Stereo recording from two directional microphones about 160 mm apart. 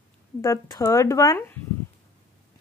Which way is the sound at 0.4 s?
20° left (ahead or behind).